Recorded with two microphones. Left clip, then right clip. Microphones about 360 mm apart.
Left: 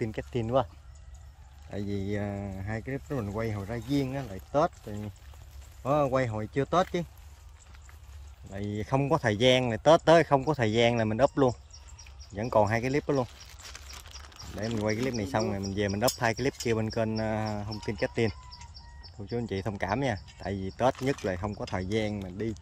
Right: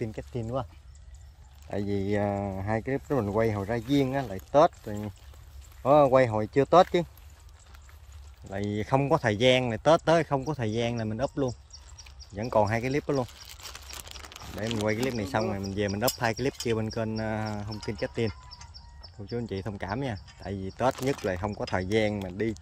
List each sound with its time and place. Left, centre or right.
0.0 s speech: centre
1.7 s speech: centre
8.5 s speech: centre
13.5 s a sound: right
14.6 s speech: centre